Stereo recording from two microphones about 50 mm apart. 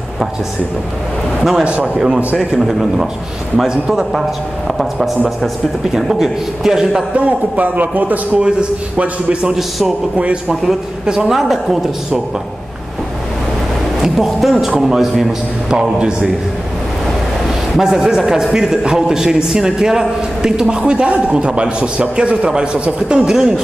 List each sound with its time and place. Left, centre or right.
1.6 s a man's voice: right
2.3 s a man's voice: centre
7.2 s a man's voice: right
8.4 s a man's voice: right
9.5 s a man's voice: centre
10.1 s a man's voice: right
10.5 s a man's voice: centre
13.9 s a man's voice: centre
17.7 s a man's voice: centre